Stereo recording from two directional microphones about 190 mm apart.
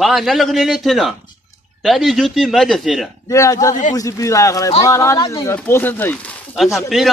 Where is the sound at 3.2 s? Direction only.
15° left (ahead or behind).